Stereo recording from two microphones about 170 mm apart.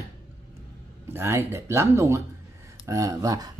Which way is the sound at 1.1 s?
15° right (ahead or behind).